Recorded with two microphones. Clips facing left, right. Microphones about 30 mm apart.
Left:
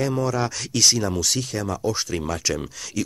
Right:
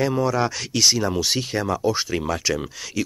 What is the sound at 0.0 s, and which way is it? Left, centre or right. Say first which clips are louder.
Speech: right 2 dB; centre.